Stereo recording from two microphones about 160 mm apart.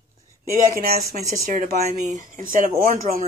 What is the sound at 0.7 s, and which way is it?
Speech, 65° right (ahead or behind).